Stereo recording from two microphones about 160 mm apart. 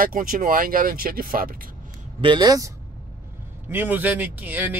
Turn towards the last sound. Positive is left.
turn(degrees=-10)  # may be behind; listen again after turning